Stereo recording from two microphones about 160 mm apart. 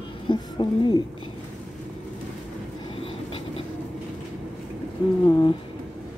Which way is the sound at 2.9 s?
35° left (ahead or behind).